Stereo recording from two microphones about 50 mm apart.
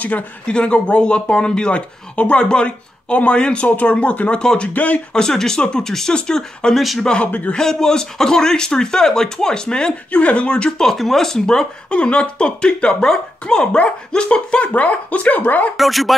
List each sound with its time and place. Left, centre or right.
0.5 s speech: left
3.6 s speech: left
4.7 s speech: left
5.1 s speech: centre
6.7 s speech: centre
7.2 s speech: left
7.5 s speech: centre
10.9 s speech: centre
11.9 s speech: left
15.8 s speech: centre